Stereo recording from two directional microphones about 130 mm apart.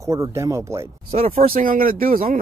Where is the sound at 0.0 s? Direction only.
25° right (ahead or behind).